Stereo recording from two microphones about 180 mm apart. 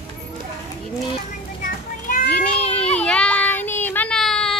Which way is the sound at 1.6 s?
50° left (ahead or behind).